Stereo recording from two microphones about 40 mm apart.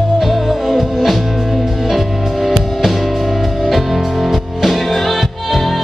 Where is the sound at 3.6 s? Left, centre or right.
Centre.